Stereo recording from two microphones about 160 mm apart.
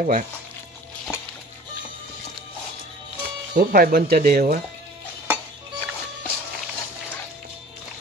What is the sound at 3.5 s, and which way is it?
Speech, 70° right (ahead or behind).